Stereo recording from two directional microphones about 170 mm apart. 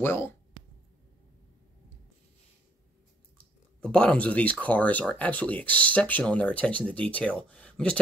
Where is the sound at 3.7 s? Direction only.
5° left (ahead or behind).